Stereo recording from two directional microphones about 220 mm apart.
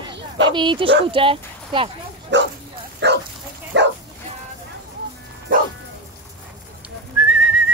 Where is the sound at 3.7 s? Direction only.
55° right (ahead or behind).